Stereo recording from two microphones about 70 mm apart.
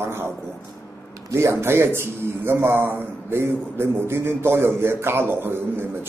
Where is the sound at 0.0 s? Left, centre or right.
Right.